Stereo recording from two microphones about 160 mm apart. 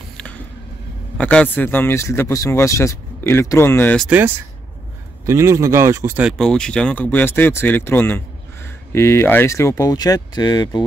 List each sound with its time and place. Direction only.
0.2 s a sound: 5° left (ahead or behind)
1.1 s speech: 10° left (ahead or behind)
5.2 s speech: 20° right (ahead or behind)
6.2 s speech: centre (ahead or behind); by 10.8 s 25° left (ahead or behind)